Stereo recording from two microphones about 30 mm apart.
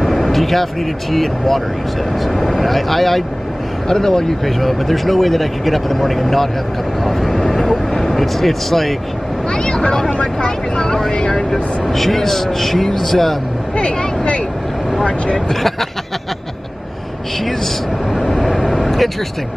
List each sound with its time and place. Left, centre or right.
0.0 s vehicle: centre
1.1 s speech: centre
3.9 s speech: centre
4.5 s speech: centre
7.0 s vehicle: centre
8.1 s speech: centre
9.5 s speech: left
11.9 s speech: centre
13.7 s vehicle: left
18.1 s vehicle: centre